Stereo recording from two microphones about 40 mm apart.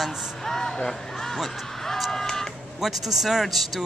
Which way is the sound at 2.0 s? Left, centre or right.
Centre.